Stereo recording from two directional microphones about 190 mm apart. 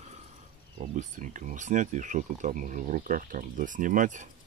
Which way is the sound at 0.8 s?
40° right (ahead or behind).